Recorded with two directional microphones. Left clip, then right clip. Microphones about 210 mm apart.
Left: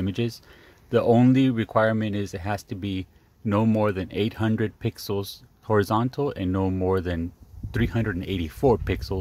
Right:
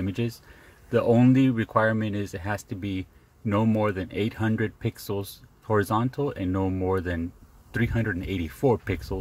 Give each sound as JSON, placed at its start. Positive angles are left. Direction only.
{"t": 0.0, "sound": "speech", "side_deg": 20}